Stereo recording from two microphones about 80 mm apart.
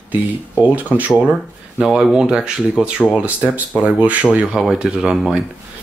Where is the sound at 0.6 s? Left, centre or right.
Centre.